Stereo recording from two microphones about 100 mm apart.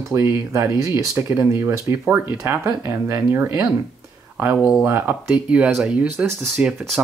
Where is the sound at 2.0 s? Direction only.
20° right (ahead or behind).